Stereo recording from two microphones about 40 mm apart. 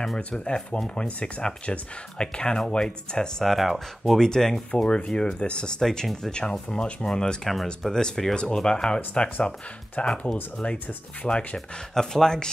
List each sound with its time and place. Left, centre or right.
0.9 s speech: left
3.5 s speech: centre
4.2 s speech: centre
4.8 s speech: left
5.8 s speech: centre
11.9 s speech: centre